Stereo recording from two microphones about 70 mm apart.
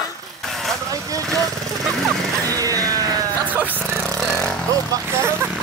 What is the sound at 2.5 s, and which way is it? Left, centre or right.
Vehicle, right.